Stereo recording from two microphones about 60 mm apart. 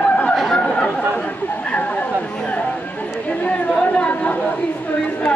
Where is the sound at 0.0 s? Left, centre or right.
Centre.